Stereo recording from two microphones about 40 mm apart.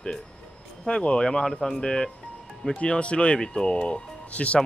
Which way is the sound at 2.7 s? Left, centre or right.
Left.